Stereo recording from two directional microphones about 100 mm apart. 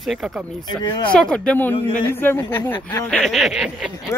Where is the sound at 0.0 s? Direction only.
Centre (ahead or behind).